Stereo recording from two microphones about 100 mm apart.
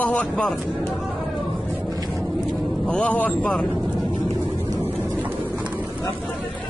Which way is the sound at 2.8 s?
15° left (ahead or behind).